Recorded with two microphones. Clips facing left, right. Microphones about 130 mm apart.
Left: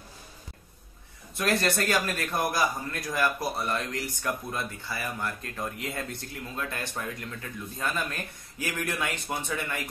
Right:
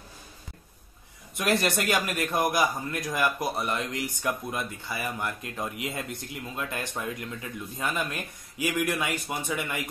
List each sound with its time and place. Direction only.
1.3 s a man's voice: 15° right (ahead or behind)